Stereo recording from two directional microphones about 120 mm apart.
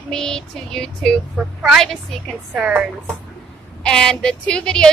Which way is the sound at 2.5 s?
10° right (ahead or behind).